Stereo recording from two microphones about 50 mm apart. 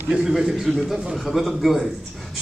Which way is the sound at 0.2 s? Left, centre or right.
Centre.